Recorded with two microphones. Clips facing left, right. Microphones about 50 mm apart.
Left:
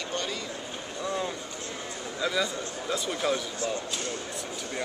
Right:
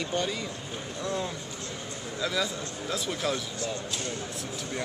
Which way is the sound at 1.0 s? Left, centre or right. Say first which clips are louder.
Left 1 dB; centre.